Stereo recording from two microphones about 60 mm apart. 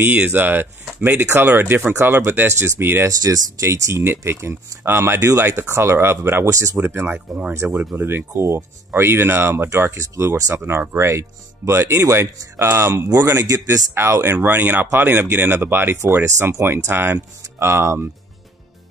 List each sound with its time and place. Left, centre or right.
0.3 s speech: right
3.1 s speech: right
3.6 s speech: right
5.2 s speech: right
5.5 s speech: right
6.5 s speech: right
6.8 s speech: right
13.1 s speech: right
13.7 s speech: right